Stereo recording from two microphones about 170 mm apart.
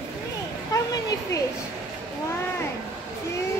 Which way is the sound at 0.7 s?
20° left (ahead or behind).